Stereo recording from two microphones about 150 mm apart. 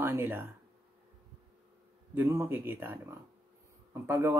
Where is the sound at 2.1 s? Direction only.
15° right (ahead or behind).